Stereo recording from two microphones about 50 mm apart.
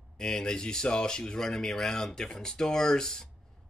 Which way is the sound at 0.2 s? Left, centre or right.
Centre.